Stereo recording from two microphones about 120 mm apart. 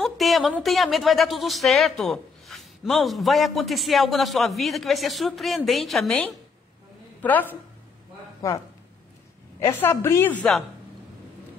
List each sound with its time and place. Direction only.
0.0 s speech: centre (ahead or behind)
7.2 s a woman's voice: 15° left (ahead or behind)
9.6 s a woman's voice: 20° left (ahead or behind)